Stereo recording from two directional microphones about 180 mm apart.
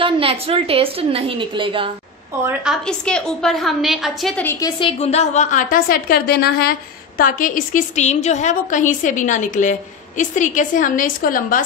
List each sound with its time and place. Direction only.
0.0 s a woman's voice: 30° right (ahead or behind)
2.6 s a woman's voice: centre (ahead or behind)
4.5 s a woman's voice: 20° left (ahead or behind); by 6.7 s 60° left (ahead or behind)
7.2 s a woman's voice: 45° left (ahead or behind)